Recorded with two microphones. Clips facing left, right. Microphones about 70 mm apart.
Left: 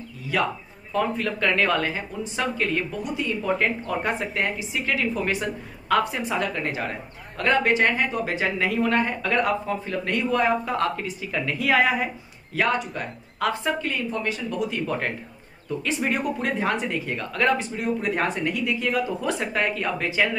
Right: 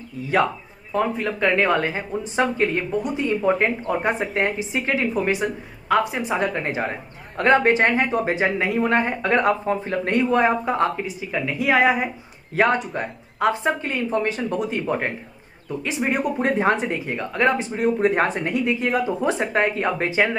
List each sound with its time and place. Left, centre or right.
0.3 s speech: right
0.9 s speech: centre
5.1 s a woman's voice: centre
12.5 s speech: right
14.9 s a woman's voice: centre
16.4 s speech: right
17.7 s speech: right